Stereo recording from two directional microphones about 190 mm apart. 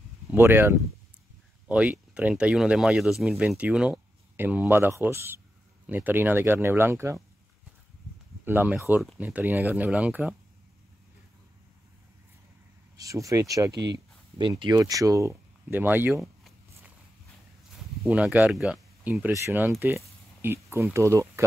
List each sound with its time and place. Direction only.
0.3 s speech: 10° right (ahead or behind)
8.5 s speech: 10° right (ahead or behind)
12.9 s speech: 20° right (ahead or behind); by 16.5 s centre (ahead or behind)
18.0 s speech: 5° right (ahead or behind)